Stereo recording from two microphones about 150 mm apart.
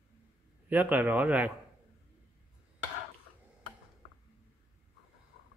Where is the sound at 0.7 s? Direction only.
10° right (ahead or behind).